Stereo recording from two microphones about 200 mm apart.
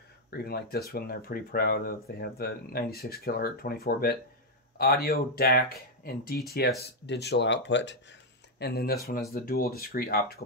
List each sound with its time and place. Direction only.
0.3 s speech: 50° left (ahead or behind)